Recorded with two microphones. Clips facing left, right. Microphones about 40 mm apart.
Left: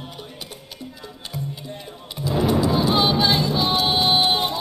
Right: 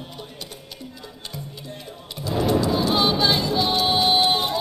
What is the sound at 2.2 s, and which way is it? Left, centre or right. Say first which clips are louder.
Music: left 1 dB; centre.